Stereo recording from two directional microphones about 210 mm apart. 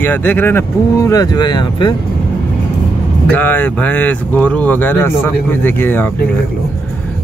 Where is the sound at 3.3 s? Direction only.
10° left (ahead or behind).